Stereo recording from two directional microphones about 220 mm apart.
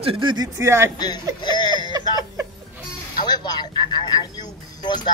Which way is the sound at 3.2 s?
20° left (ahead or behind).